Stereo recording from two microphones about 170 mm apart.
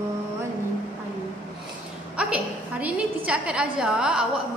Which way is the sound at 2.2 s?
10° right (ahead or behind).